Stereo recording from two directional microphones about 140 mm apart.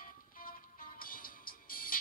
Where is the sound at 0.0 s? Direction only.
85° left.